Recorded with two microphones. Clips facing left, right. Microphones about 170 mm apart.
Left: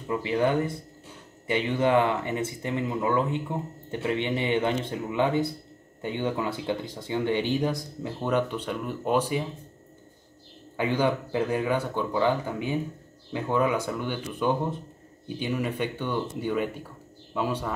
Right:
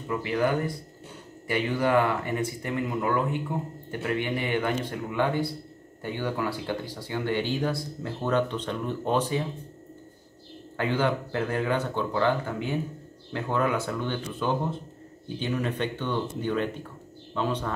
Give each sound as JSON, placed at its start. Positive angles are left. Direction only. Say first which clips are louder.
{"t": 0.1, "sound": "speech", "louder": "left 1 dB", "side_deg": 25}
{"t": 10.8, "sound": "speech", "louder": "left 1 dB", "side_deg": 15}